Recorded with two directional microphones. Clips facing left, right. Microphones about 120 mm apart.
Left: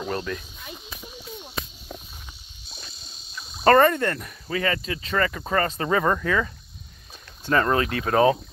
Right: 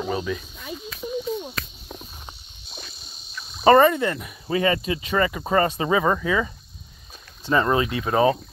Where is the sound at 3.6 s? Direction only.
10° right (ahead or behind).